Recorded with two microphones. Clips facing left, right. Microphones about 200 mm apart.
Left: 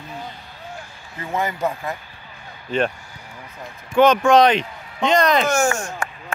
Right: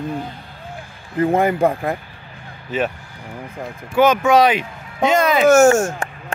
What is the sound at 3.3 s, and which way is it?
Vehicle, 55° right (ahead or behind).